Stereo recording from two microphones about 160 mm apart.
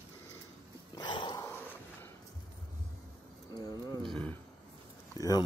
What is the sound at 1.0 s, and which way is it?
Dog, 30° left (ahead or behind).